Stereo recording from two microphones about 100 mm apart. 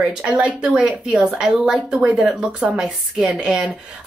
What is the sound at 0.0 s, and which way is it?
Speech, 10° right (ahead or behind).